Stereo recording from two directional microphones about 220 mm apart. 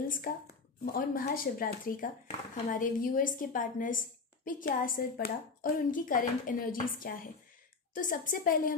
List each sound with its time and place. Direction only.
0.3 s a woman's voice: 40° left (ahead or behind)